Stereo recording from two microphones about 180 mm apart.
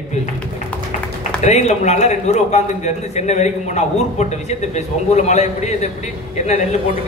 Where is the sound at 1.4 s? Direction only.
40° left (ahead or behind).